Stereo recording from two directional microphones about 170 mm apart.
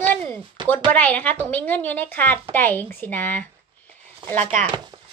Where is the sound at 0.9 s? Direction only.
10° left (ahead or behind).